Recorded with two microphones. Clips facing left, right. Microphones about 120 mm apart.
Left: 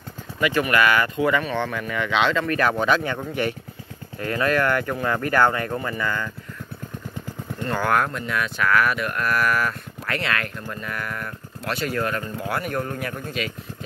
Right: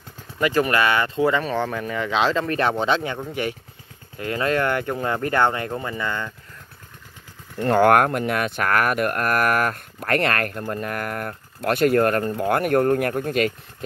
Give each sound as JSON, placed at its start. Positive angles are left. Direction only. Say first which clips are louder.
{"t": 0.4, "sound": "speech", "louder": "right 1 dB", "side_deg": -35}
{"t": 4.2, "sound": "speech", "louder": "even", "side_deg": -25}
{"t": 7.6, "sound": "speech", "louder": "right 7 dB", "side_deg": -60}